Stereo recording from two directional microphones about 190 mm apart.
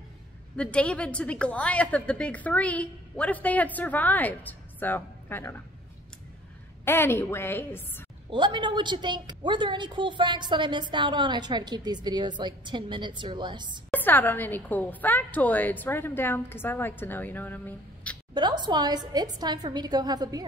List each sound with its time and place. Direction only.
0.6 s a woman's voice: 5° left (ahead or behind)
6.8 s a woman's voice: 10° left (ahead or behind)
8.3 s a woman's voice: 25° right (ahead or behind)
13.8 s a woman's voice: 10° left (ahead or behind)
18.3 s a woman's voice: 25° right (ahead or behind)